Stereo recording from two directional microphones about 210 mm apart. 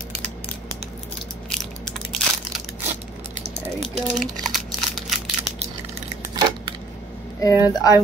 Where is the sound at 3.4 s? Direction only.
30° right (ahead or behind).